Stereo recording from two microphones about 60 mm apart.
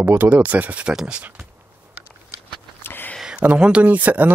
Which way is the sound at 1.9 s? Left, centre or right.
Right.